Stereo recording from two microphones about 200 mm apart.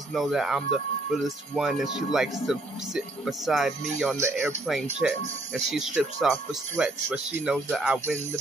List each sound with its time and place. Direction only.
0.1 s speech: centre (ahead or behind)